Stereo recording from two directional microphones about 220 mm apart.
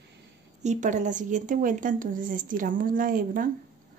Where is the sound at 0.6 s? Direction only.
35° right (ahead or behind).